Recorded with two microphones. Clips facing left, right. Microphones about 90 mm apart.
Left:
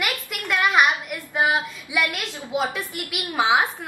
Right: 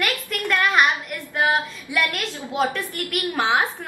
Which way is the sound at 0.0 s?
15° left (ahead or behind).